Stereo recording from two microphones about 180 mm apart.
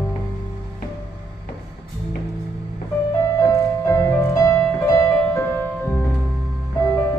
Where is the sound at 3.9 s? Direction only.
15° left (ahead or behind).